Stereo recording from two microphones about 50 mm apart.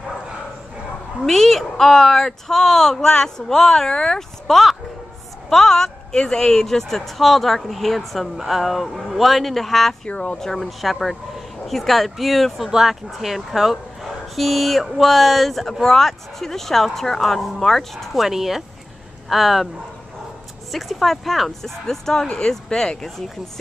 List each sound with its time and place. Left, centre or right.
1.2 s speech: centre
10.0 s speech: left
10.4 s speech: centre
20.7 s speech: centre